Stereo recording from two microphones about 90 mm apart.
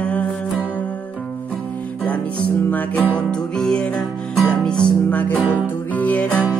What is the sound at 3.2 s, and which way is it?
Music, 10° left (ahead or behind).